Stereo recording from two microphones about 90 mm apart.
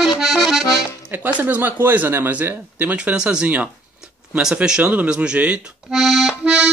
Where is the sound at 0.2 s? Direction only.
Centre (ahead or behind).